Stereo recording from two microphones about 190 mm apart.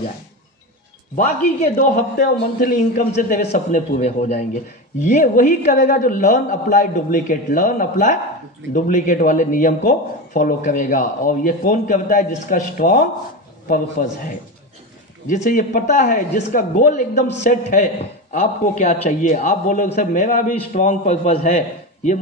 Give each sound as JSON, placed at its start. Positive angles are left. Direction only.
{"t": 1.1, "sound": "speech", "side_deg": 45}